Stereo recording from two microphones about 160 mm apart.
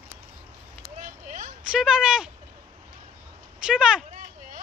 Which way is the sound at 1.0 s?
55° right (ahead or behind).